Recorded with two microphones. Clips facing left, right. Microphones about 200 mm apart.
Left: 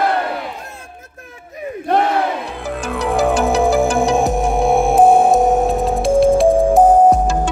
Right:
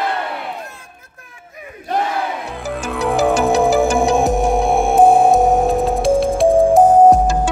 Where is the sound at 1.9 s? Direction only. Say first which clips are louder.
Left 4 dB; 60° left (ahead or behind).